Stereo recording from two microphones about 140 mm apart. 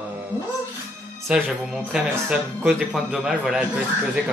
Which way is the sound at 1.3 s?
5° right (ahead or behind).